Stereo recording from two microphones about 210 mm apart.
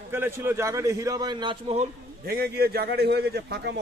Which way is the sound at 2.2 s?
45° right (ahead or behind).